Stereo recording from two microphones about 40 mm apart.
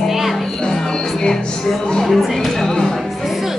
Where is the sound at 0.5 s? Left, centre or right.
Centre.